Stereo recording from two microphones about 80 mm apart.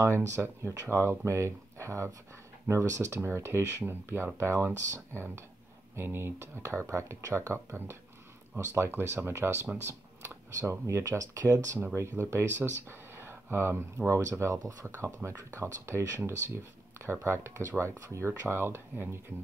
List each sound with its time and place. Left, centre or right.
0.0 s speech: right